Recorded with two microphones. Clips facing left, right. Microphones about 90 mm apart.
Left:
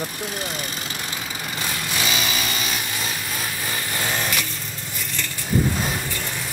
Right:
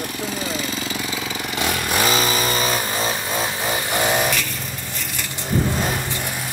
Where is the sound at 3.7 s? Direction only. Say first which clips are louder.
Right 7 dB; 20° right (ahead or behind).